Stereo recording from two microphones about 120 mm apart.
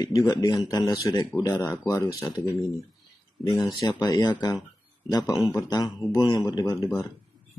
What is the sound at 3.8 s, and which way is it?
Speech, 25° left (ahead or behind).